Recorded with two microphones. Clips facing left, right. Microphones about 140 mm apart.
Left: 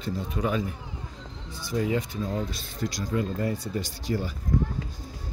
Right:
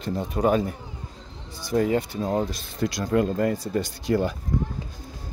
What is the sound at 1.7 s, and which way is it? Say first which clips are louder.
Speech: right 5 dB; 50° right (ahead or behind).